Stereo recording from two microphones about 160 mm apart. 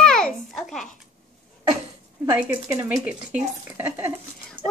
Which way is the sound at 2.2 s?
20° right (ahead or behind).